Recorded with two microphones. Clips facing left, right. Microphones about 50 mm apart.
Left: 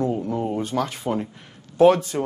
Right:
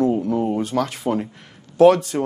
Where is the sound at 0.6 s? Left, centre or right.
Right.